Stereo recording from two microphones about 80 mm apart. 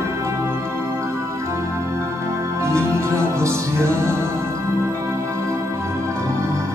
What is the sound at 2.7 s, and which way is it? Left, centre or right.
Music, right.